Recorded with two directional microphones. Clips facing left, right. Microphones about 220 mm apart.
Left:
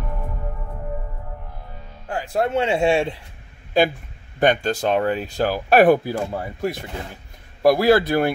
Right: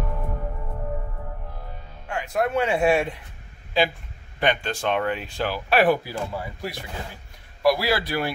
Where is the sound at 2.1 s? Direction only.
30° left (ahead or behind).